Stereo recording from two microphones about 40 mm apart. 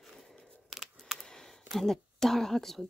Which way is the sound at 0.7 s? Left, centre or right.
Centre.